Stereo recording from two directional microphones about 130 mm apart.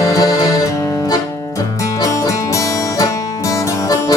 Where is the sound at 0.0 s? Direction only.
30° left (ahead or behind).